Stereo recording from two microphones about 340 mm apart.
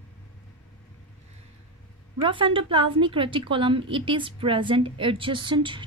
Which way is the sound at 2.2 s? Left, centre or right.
Centre.